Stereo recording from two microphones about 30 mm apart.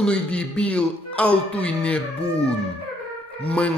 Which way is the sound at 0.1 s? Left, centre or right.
Left.